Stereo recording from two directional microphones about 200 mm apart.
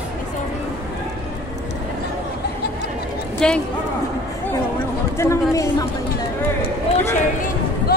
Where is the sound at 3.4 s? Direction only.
5° left (ahead or behind).